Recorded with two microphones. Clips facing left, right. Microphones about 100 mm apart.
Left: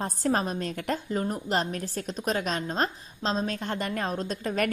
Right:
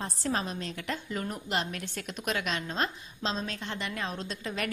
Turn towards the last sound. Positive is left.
turn(degrees=45)  # may be behind; listen again after turning